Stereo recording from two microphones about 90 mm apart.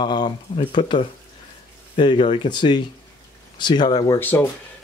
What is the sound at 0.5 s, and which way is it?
Speech, 75° left (ahead or behind).